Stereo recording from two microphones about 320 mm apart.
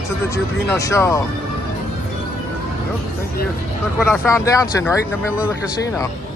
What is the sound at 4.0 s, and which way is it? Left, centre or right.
Speech, centre.